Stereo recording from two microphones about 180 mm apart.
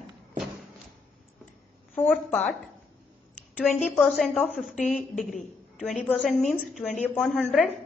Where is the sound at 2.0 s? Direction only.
10° left (ahead or behind).